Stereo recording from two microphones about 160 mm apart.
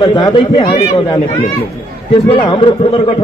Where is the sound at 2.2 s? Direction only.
35° left (ahead or behind).